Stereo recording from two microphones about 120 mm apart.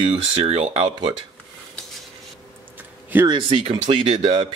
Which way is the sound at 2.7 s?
15° right (ahead or behind).